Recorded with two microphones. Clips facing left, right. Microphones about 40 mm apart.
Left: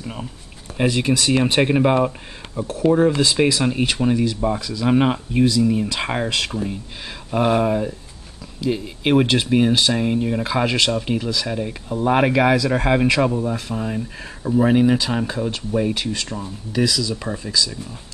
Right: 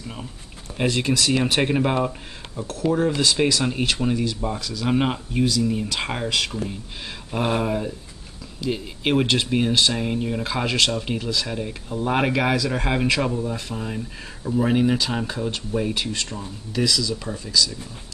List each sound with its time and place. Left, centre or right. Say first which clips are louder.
0.7 s speech: left 3 dB; centre
2.6 s speech: left 5 dB; left
2.9 s speech: left 4 dB; centre
7.2 s speech: left 5 dB; centre